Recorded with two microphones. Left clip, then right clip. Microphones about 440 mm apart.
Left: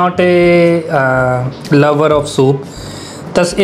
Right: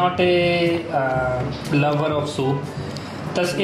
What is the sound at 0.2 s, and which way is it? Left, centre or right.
Speech, left.